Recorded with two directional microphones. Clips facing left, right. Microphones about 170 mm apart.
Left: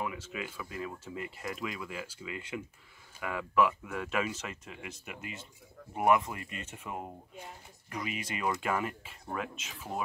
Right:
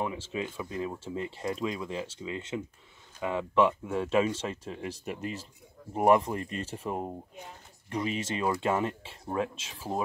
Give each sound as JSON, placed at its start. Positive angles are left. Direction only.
{"t": 0.0, "sound": "speech", "side_deg": -30}